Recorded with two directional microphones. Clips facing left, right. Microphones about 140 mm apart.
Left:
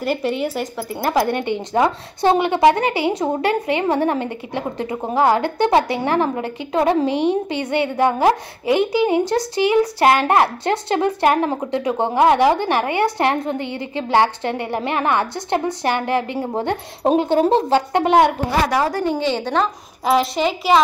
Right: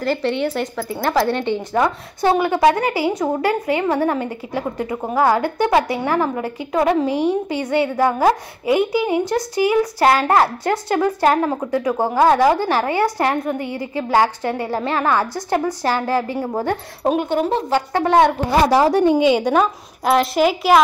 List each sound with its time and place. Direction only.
0.0 s a woman's voice: 10° left (ahead or behind)
18.7 s a woman's voice: 25° right (ahead or behind); by 20.8 s 5° right (ahead or behind)